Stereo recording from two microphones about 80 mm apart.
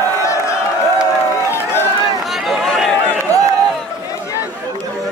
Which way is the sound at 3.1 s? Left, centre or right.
Left.